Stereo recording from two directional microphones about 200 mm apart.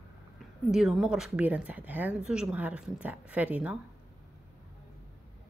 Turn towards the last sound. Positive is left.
turn(degrees=-5)  # may be behind; listen again after turning